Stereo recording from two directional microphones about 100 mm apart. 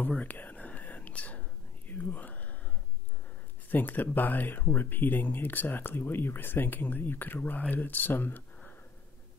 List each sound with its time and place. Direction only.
0.1 s whispering: 15° left (ahead or behind)
3.7 s speech: 15° left (ahead or behind)